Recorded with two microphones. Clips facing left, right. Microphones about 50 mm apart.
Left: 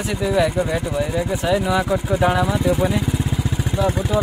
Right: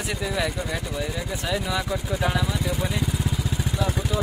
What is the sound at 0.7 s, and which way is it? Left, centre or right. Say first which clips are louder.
Speech: left 7 dB; left.